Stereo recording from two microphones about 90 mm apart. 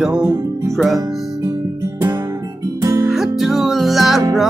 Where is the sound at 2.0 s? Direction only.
40° right (ahead or behind).